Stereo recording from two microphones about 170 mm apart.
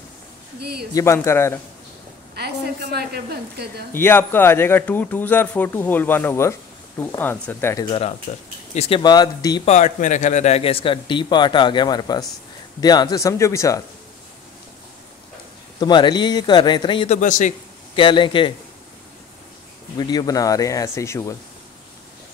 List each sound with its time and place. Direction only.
0.6 s speech: 70° right (ahead or behind)
0.9 s a man's voice: 15° left (ahead or behind)
2.3 s a woman's voice: 70° right (ahead or behind)
3.9 s a man's voice: 15° left (ahead or behind)
7.8 s speech: 30° left (ahead or behind)
9.0 s speech: 25° left (ahead or behind)
9.7 s speech: 45° left (ahead or behind); by 13.7 s 15° left (ahead or behind)
15.8 s speech: 25° left (ahead or behind)
17.2 s a man's voice: 45° left (ahead or behind)
17.9 s speech: 30° left (ahead or behind)
20.0 s speech: 25° left (ahead or behind)